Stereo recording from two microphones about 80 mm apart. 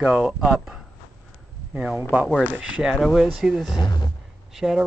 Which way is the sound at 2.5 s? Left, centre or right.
Centre.